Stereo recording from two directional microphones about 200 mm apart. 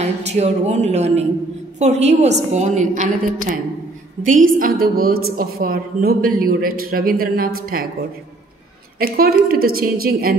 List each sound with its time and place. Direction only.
0.0 s speech: 35° right (ahead or behind)
4.6 s a woman's voice: 45° right (ahead or behind)
9.0 s a woman's voice: 45° right (ahead or behind)